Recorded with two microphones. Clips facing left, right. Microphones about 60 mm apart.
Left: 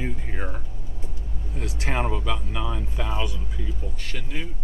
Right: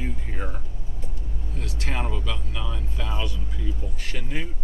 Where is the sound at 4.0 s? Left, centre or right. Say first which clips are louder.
Right 1 dB; centre.